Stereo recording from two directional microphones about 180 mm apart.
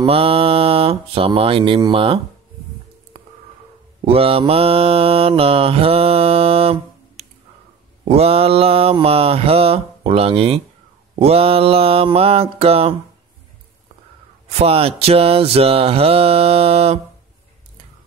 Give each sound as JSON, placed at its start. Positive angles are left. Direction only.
{"t": 0.0, "sound": "mantra", "side_deg": -30}
{"t": 4.0, "sound": "mantra", "side_deg": -30}
{"t": 14.5, "sound": "mantra", "side_deg": -35}